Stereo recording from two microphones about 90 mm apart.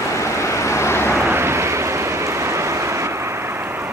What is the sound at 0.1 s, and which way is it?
Vehicle, 35° left (ahead or behind).